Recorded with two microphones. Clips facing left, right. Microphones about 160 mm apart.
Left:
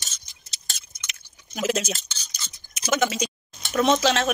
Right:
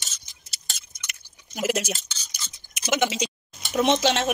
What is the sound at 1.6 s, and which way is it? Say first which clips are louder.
Speech: left 1 dB; 10° right (ahead or behind).